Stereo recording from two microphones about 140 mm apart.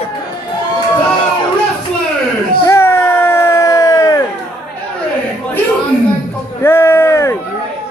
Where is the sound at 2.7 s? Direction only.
20° left (ahead or behind).